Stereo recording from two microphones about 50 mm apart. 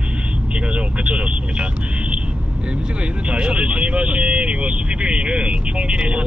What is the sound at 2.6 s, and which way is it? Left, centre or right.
Speech, right.